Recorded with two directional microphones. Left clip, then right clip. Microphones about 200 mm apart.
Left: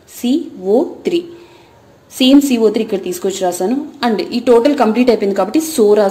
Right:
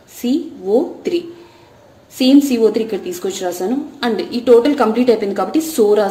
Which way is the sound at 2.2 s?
25° left (ahead or behind).